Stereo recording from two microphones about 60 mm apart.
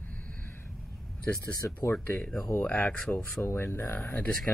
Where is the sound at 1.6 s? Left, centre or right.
Left.